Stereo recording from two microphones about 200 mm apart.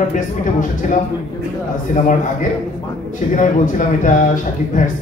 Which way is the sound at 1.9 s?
40° left (ahead or behind).